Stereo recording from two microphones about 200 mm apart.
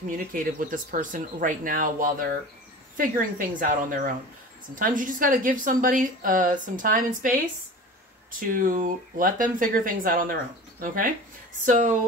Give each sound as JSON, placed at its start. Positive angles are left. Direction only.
{"t": 0.0, "sound": "a woman's voice", "side_deg": -40}